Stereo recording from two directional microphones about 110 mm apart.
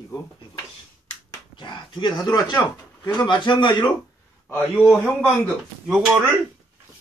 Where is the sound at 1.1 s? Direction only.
45° left (ahead or behind).